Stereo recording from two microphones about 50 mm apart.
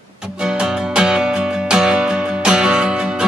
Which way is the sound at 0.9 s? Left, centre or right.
Centre.